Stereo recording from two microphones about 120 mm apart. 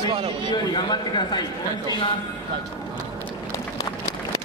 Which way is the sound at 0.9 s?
35° left (ahead or behind).